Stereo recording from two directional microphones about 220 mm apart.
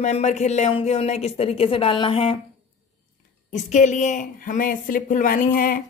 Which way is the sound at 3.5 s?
35° left (ahead or behind).